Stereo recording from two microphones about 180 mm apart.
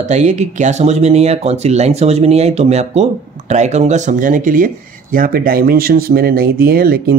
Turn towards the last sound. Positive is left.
turn(degrees=-55)  # may be behind; listen again after turning